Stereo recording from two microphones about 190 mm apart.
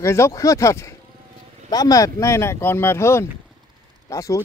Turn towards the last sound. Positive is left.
turn(degrees=15)  # may be behind; listen again after turning